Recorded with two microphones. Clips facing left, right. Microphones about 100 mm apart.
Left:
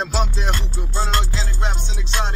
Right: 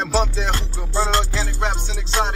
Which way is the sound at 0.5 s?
35° right (ahead or behind).